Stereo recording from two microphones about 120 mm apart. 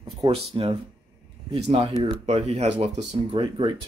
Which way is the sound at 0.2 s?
45° right (ahead or behind).